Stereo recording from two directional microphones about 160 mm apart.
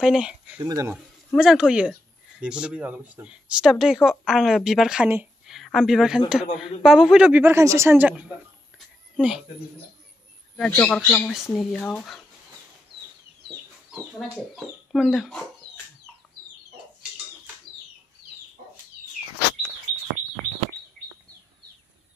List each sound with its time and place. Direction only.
0.0 s speech: 5° right (ahead or behind)
0.6 s speech: 20° right (ahead or behind)
0.9 s speech: 5° right (ahead or behind)
8.7 s a sound: 5° right (ahead or behind)
10.5 s speech: 5° left (ahead or behind)
14.3 s speech: centre (ahead or behind)